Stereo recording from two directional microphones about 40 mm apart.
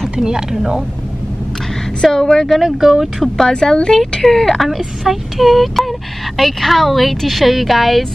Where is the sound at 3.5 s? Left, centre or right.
Centre.